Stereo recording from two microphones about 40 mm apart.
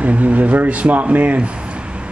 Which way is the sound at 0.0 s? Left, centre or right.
Right.